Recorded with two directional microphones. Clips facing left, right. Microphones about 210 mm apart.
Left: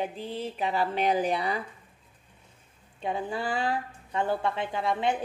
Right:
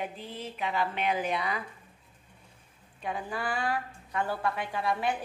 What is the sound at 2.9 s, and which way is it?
A woman's voice, 25° left (ahead or behind).